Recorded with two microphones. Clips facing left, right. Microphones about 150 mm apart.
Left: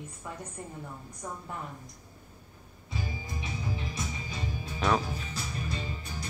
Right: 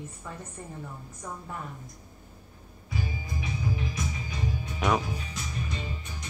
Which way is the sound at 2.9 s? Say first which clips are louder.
Right 3 dB; 25° left (ahead or behind).